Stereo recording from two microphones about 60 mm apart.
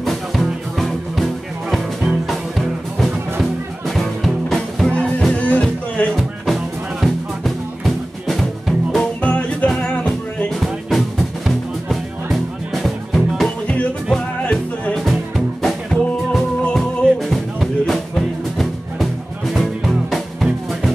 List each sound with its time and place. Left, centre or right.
0.0 s music: centre
5.3 s music: left
6.1 s music: centre
9.2 s music: left
10.5 s music: centre
14.4 s music: left
15.0 s music: centre
15.9 s music: centre